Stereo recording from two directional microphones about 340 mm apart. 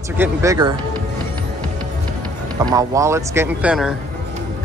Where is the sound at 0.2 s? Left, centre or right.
Centre.